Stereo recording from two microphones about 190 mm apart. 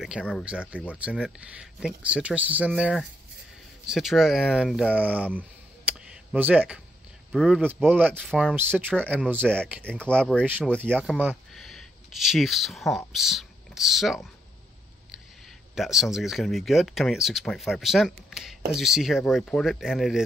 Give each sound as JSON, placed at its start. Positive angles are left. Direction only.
{"t": 0.2, "sound": "speech", "side_deg": 0}
{"t": 5.9, "sound": "a sound", "side_deg": -10}
{"t": 7.3, "sound": "speech", "side_deg": 0}
{"t": 9.8, "sound": "speech", "side_deg": 5}
{"t": 15.7, "sound": "speech", "side_deg": 0}